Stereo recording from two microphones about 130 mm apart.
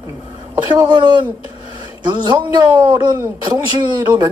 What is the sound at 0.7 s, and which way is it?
Speech, 35° right (ahead or behind).